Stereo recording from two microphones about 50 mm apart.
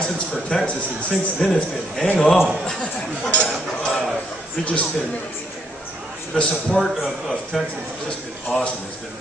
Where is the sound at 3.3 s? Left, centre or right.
Left.